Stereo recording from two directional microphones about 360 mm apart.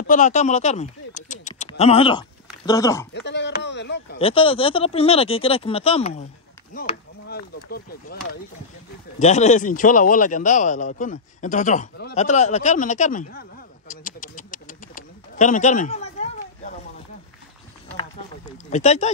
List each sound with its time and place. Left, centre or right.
0.0 s speech: left
3.1 s speech: left
4.2 s speech: centre
9.2 s a man's voice: centre
18.7 s speech: centre